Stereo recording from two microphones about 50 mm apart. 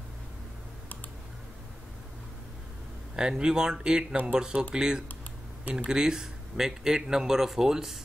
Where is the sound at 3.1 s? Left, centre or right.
Centre.